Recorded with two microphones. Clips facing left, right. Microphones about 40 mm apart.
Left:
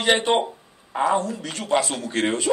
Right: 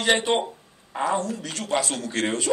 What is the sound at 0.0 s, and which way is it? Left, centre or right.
A man's voice, centre.